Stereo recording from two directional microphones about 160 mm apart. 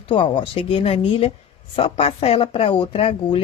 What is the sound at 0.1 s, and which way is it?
Speech, 35° left (ahead or behind).